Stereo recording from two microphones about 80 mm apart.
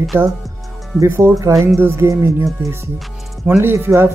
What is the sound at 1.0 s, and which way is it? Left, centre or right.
Speech, right.